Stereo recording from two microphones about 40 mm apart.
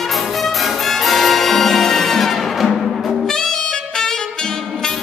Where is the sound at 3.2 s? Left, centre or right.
Centre.